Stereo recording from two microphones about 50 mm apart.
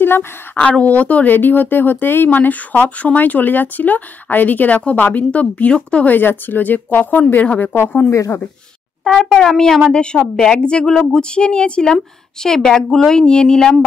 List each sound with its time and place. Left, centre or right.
0.0 s a woman's voice: left
0.6 s speech: left
1.3 s speech: left
6.0 s speech: left
8.1 s speech: left
9.0 s a woman's voice: centre
9.9 s a woman's voice: centre